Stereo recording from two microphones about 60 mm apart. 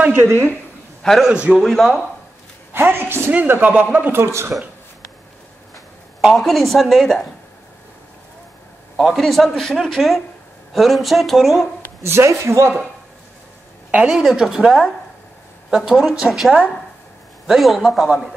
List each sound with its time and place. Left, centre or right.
0.1 s speech: right
1.0 s a man's voice: centre
2.7 s a woman's voice: right
4.1 s speech: right
6.2 s a woman's voice: centre
8.9 s a man's voice: centre
12.0 s speech: right
14.0 s a woman's voice: centre